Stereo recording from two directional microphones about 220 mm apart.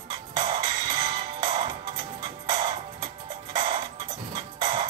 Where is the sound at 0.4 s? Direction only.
20° right (ahead or behind).